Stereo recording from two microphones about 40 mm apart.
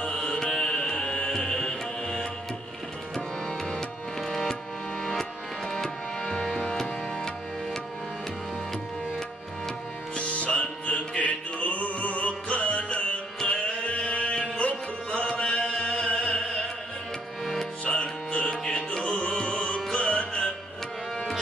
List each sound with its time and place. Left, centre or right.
0.0 s carnatic music: centre
0.8 s music: centre
3.2 s tabla: centre
4.2 s music: centre
5.7 s tabla: centre
6.3 s music: left
10.1 s music: left
15.1 s chant: left; by 16.1 s centre
16.2 s music: centre
17.8 s music: left
18.6 s music: centre
19.0 s music: left